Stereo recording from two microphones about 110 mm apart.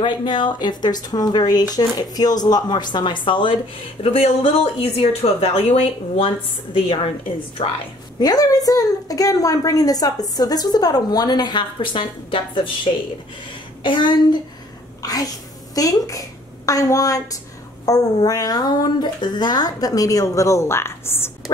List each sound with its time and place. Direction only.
0.0 s a woman's voice: 45° left (ahead or behind)
4.0 s speech: 65° left (ahead or behind)
8.2 s a woman's voice: 35° left (ahead or behind)
13.8 s a woman's voice: 45° left (ahead or behind)
15.0 s a woman's voice: 35° left (ahead or behind)